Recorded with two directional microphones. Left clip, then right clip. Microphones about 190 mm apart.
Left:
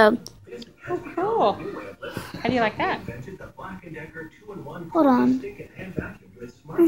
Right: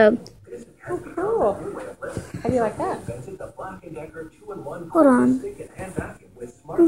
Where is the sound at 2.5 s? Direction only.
40° left (ahead or behind).